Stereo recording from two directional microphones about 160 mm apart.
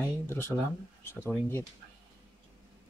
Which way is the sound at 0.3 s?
15° left (ahead or behind).